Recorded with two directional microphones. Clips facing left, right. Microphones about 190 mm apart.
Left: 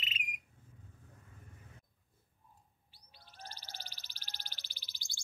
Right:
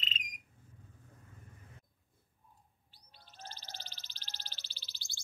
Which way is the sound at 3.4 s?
10° left (ahead or behind).